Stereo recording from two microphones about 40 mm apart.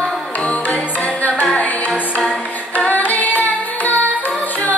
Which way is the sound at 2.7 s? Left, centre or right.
Left.